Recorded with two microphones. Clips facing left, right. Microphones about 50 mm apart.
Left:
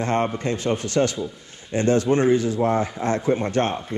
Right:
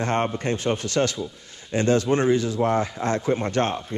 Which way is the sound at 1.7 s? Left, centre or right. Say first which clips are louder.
Left 1 dB; right.